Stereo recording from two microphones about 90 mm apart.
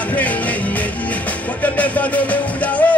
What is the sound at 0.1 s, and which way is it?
Music, 15° left (ahead or behind).